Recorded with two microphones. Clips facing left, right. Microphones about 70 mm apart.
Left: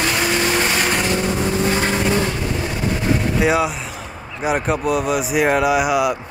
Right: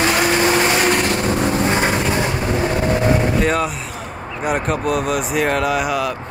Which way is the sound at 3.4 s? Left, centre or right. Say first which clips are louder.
Left 1 dB; centre.